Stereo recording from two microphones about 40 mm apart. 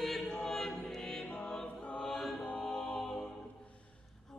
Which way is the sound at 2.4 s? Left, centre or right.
Left.